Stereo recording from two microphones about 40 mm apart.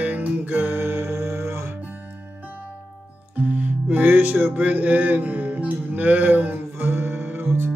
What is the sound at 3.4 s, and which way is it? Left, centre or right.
Music, right.